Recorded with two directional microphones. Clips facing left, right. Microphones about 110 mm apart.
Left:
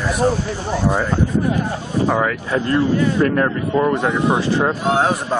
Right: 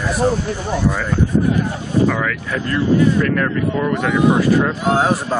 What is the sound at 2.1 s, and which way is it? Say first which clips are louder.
Speech: left 2 dB; 30° left (ahead or behind).